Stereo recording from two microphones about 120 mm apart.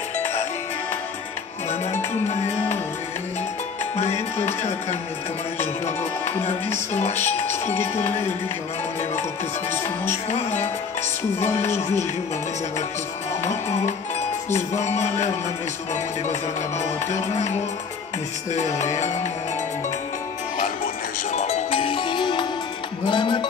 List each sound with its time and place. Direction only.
3.9 s music: 60° left (ahead or behind)
6.9 s music: 65° left (ahead or behind)
7.7 s music: 20° left (ahead or behind)
10.3 s music: 65° left (ahead or behind)
13.4 s music: 75° left (ahead or behind)
18.6 s music: 75° left (ahead or behind)
21.3 s music: 70° left (ahead or behind); by 23.4 s 40° left (ahead or behind)